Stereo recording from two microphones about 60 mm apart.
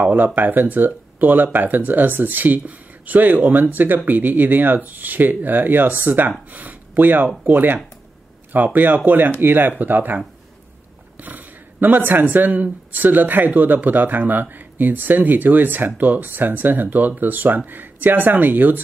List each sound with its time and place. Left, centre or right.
0.0 s speech: right